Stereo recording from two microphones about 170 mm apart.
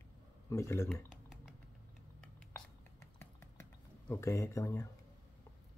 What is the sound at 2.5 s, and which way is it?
Whispering, 15° left (ahead or behind).